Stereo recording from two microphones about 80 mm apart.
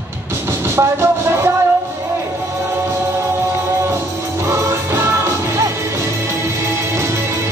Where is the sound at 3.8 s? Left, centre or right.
Right.